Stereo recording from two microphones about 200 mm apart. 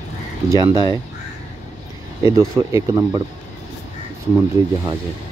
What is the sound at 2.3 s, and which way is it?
Speech, 15° right (ahead or behind).